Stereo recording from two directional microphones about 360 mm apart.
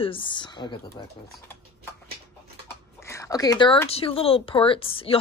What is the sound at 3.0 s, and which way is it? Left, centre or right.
Speech, centre.